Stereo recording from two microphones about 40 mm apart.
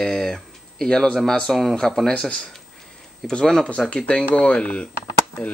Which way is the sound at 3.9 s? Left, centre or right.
Left.